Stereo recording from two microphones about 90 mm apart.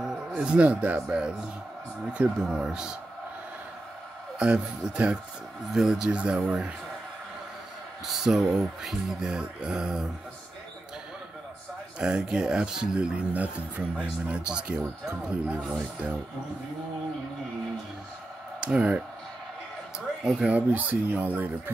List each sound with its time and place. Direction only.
0.0 s speech: 10° right (ahead or behind)
4.4 s speech: 10° right (ahead or behind)
8.1 s speech: 5° right (ahead or behind)
12.0 s speech: 10° right (ahead or behind)
18.6 s speech: 10° right (ahead or behind)
20.2 s speech: 10° right (ahead or behind)